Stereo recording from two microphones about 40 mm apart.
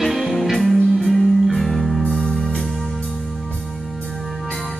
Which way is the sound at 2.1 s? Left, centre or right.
Left.